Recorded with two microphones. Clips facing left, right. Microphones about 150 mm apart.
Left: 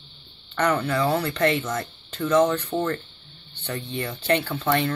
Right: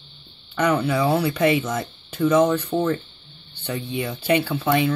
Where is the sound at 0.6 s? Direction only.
5° right (ahead or behind).